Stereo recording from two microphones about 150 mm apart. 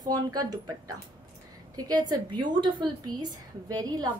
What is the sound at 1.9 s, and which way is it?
A woman's voice, 30° right (ahead or behind).